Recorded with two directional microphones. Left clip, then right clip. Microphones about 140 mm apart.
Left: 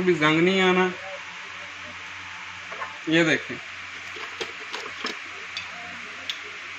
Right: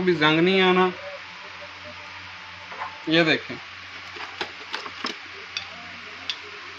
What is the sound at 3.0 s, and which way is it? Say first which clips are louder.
Speech: right 1 dB; 5° left (ahead or behind).